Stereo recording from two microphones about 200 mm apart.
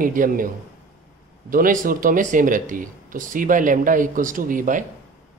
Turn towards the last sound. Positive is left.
turn(degrees=-40)  # may be behind; listen again after turning